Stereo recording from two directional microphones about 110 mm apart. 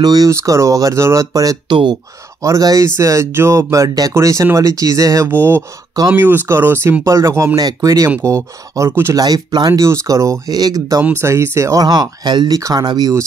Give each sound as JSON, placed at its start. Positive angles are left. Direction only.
{"t": 0.0, "sound": "speech", "side_deg": -35}
{"t": 1.7, "sound": "speech", "side_deg": -45}
{"t": 2.4, "sound": "speech", "side_deg": -30}
{"t": 9.2, "sound": "speech", "side_deg": -40}
{"t": 11.0, "sound": "speech", "side_deg": -20}